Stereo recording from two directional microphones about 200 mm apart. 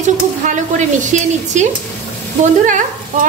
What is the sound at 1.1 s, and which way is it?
A woman's voice, 35° right (ahead or behind).